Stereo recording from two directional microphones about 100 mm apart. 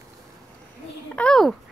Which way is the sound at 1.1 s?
10° left (ahead or behind).